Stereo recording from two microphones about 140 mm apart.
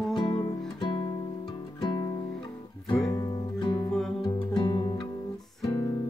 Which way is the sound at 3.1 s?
30° left (ahead or behind).